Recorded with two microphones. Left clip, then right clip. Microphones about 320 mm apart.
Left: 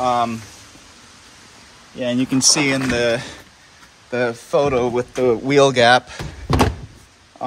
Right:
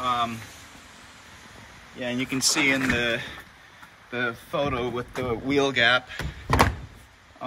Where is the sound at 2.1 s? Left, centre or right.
Left.